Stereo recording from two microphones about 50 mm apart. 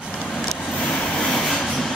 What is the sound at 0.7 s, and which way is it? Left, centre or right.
Train, left.